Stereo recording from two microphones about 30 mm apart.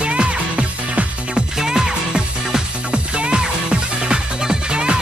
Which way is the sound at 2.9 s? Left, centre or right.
Right.